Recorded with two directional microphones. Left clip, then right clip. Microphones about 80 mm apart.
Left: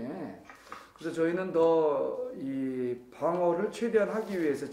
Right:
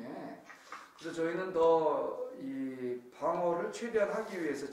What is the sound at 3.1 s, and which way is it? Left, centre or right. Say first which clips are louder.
Speech: left 4 dB; right.